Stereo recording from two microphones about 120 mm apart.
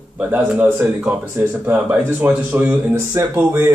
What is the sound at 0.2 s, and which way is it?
Speech, 15° right (ahead or behind).